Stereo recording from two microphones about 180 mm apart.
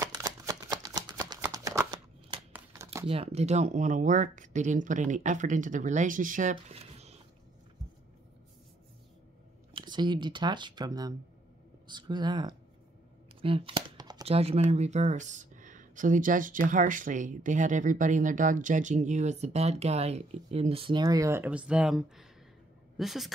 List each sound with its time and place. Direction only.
0.0 s shuffling cards: 20° right (ahead or behind)
1.4 s a sound: 15° right (ahead or behind)
2.5 s crumpling: 15° right (ahead or behind)
3.1 s speech: 35° right (ahead or behind)
9.8 s speech: 25° right (ahead or behind)
13.4 s computer keyboard: 30° right (ahead or behind)
14.2 s a woman's voice: 35° right (ahead or behind); by 23.3 s centre (ahead or behind)